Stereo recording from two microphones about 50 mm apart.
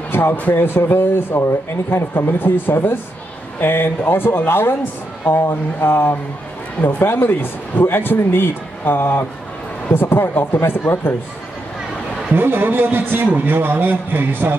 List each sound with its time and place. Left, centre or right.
0.1 s speech: left
12.4 s a man's voice: right